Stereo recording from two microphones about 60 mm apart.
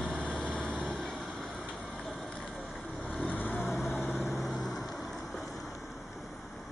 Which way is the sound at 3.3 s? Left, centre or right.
Left.